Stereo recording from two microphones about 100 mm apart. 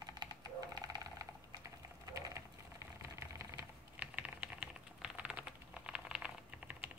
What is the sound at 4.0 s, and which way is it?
Typing, 15° right (ahead or behind).